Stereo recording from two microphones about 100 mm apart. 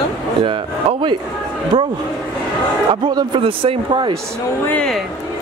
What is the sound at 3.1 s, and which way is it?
Speech, 45° right (ahead or behind).